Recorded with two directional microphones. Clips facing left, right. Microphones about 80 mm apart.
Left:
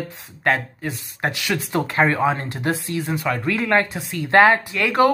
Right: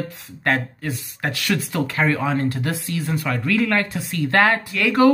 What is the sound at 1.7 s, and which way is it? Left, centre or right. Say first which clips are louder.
Speech: left 4 dB; left.